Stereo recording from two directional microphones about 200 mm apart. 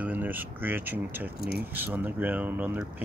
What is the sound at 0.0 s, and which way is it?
Speech, 10° right (ahead or behind).